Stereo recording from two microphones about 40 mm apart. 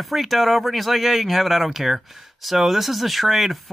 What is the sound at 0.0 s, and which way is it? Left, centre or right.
Speech, centre.